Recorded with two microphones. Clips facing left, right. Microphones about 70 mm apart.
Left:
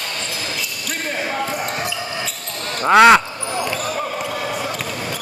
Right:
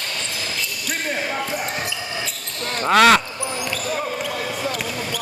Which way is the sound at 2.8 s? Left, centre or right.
Centre.